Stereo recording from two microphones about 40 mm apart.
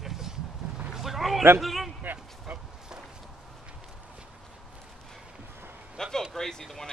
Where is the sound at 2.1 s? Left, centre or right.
Right.